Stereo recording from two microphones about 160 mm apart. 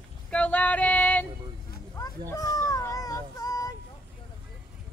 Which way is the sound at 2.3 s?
20° left (ahead or behind).